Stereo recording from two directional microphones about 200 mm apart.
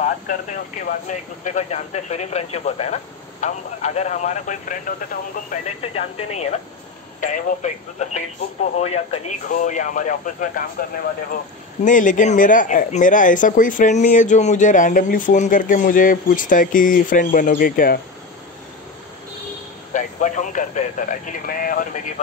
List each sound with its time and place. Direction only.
0.0 s speech: 35° left (ahead or behind)
5.5 s speech: 30° left (ahead or behind)
11.8 s speech: 40° left (ahead or behind)
19.9 s speech: 40° left (ahead or behind)